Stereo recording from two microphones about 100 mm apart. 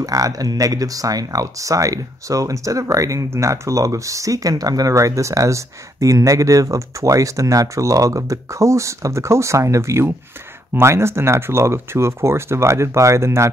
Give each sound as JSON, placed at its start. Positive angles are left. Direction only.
{"t": 0.0, "sound": "speech", "side_deg": -35}